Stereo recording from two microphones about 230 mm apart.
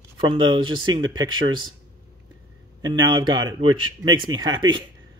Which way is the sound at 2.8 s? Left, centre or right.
Centre.